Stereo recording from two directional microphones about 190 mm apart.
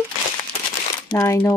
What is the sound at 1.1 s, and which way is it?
Speech, 15° left (ahead or behind).